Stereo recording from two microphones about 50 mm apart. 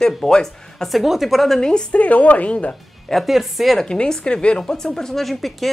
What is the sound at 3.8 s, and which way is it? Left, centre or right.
A woman's voice, centre.